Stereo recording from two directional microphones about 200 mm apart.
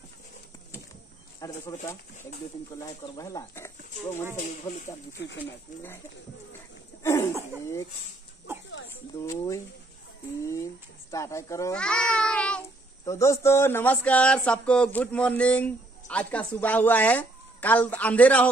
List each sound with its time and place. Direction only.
1.4 s speech: 15° left (ahead or behind)
7.0 s a sound: 15° left (ahead or behind)
9.2 s speech: 15° left (ahead or behind)